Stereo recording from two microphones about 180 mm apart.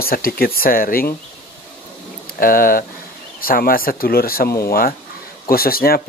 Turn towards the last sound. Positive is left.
turn(degrees=55)  # may be behind; listen again after turning